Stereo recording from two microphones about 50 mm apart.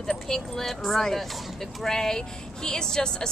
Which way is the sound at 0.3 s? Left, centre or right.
Centre.